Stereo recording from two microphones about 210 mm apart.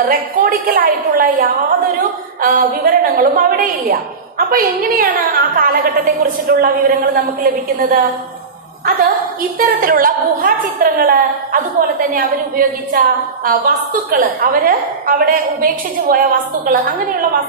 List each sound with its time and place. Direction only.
0.1 s a woman's voice: 40° right (ahead or behind)